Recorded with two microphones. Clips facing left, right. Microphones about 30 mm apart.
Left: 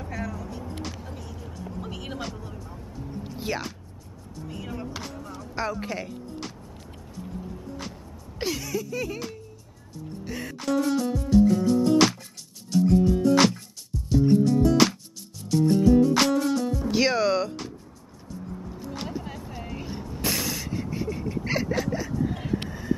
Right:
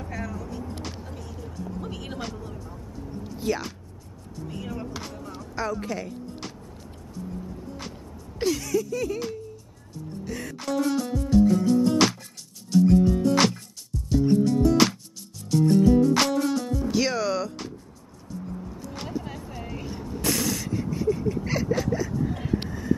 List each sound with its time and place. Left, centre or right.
0.0 s vehicle: centre
1.7 s a sound: centre
4.7 s vehicle: centre
5.5 s speech: centre
8.4 s speech: centre
10.2 s music: centre
10.6 s music: centre
16.9 s speech: centre
18.3 s music: centre
18.9 s a sound: centre
19.9 s vehicle: centre
21.5 s a sound: centre
22.1 s vehicle: centre